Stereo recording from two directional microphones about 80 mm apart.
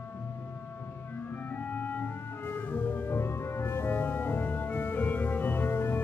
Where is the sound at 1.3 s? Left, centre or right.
Left.